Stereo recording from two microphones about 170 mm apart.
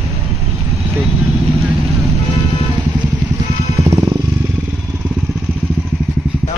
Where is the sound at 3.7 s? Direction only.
20° right (ahead or behind).